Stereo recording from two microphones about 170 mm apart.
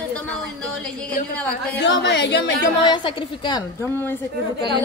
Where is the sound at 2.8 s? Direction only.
30° left (ahead or behind).